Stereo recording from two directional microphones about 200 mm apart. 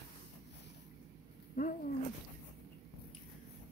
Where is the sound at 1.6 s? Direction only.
40° left (ahead or behind).